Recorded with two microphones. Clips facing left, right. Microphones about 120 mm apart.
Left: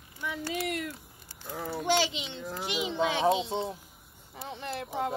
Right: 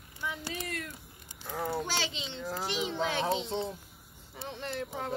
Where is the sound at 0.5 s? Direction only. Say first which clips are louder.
Left 6 dB; 15° left (ahead or behind).